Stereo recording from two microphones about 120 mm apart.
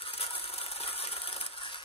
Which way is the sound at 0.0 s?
50° left (ahead or behind).